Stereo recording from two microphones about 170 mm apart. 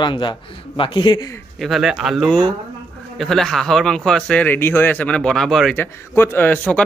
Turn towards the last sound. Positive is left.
turn(degrees=10)  # may be behind; listen again after turning